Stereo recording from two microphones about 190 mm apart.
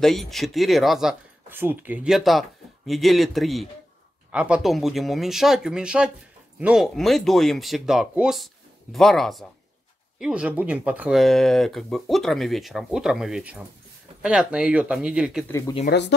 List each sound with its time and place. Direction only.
0.0 s speech: centre (ahead or behind)
15.4 s speech: 15° left (ahead or behind)
15.9 s speech: 60° left (ahead or behind)